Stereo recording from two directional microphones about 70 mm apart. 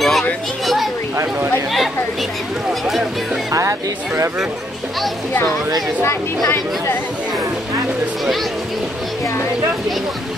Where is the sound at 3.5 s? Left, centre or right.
Right.